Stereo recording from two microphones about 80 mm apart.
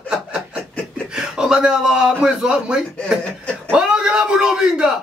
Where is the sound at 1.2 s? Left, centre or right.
Centre.